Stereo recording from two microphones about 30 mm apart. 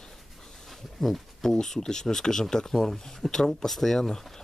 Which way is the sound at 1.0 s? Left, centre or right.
Left.